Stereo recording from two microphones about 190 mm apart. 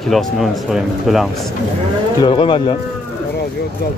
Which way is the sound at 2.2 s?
25° left (ahead or behind).